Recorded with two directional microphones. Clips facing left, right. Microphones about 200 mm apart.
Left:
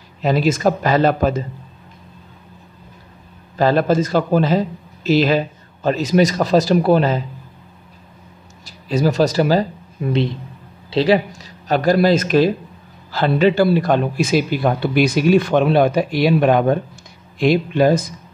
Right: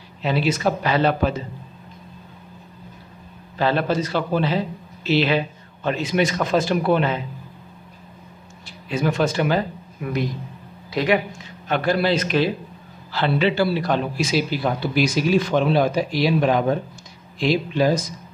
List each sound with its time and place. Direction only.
0.2 s speech: 45° left (ahead or behind)
3.5 s a man's voice: 45° left (ahead or behind)
8.6 s a man's voice: 40° left (ahead or behind); by 18.0 s 55° left (ahead or behind)